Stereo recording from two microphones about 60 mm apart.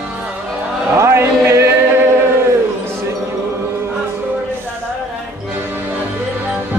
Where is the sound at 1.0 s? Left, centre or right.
Right.